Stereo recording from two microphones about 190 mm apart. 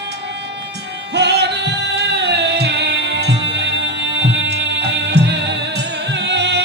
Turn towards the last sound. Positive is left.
turn(degrees=-65)  # may be behind; listen again after turning